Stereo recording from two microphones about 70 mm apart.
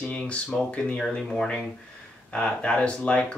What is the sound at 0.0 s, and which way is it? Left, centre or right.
Speech, centre.